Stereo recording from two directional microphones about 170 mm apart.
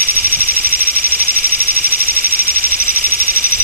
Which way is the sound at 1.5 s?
60° right (ahead or behind).